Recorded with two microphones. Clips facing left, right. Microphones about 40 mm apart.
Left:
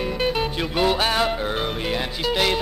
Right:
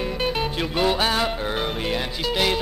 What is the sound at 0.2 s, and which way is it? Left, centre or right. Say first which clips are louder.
Music: left 1 dB; centre.